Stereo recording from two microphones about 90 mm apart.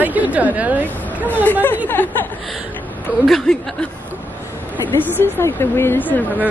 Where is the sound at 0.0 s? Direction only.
20° right (ahead or behind).